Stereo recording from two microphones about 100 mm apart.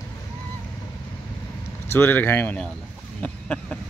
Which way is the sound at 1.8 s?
25° left (ahead or behind).